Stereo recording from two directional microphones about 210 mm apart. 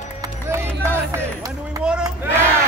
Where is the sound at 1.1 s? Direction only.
15° right (ahead or behind).